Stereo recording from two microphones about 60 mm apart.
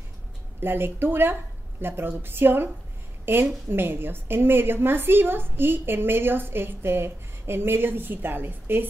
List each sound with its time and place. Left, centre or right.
0.6 s a woman's voice: right